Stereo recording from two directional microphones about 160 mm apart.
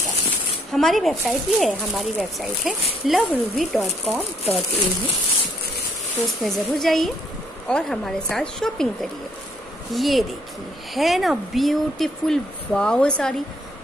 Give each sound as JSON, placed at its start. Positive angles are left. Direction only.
{"t": 0.7, "sound": "speech", "side_deg": 0}
{"t": 6.4, "sound": "speech", "side_deg": 0}
{"t": 9.9, "sound": "speech", "side_deg": 0}